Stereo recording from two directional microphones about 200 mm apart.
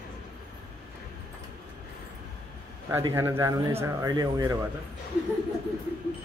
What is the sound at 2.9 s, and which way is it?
Speech, 10° right (ahead or behind).